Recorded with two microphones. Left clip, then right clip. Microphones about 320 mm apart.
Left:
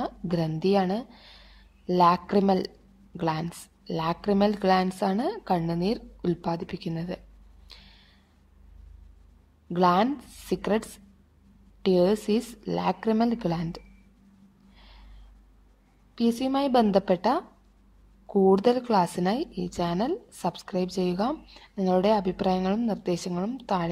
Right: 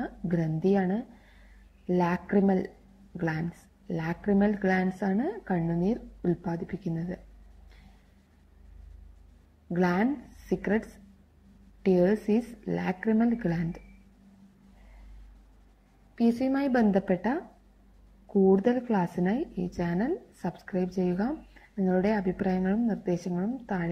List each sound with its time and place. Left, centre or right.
0.0 s a sound: left
0.7 s a woman's voice: left
1.9 s a woman's voice: left
9.7 s a woman's voice: left
11.8 s a woman's voice: left
16.2 s a woman's voice: left